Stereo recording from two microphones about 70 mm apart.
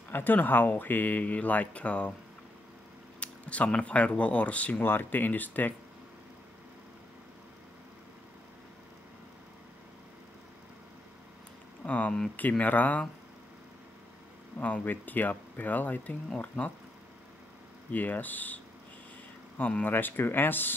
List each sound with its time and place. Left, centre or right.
0.1 s speech: left
3.2 s speech: centre
11.8 s speech: centre
14.6 s speech: left
17.9 s speech: left
19.6 s speech: left